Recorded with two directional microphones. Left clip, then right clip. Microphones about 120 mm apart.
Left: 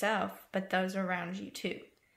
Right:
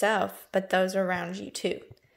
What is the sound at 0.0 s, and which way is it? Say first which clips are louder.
A woman's voice: right 6 dB; 45° right (ahead or behind).